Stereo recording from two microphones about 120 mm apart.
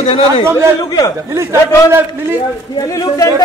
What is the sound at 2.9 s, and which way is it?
Speech, 30° left (ahead or behind).